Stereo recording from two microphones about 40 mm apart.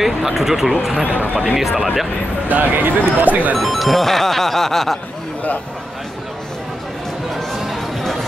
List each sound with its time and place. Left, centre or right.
0.0 s speech: centre
2.4 s speech: right
3.5 s music: centre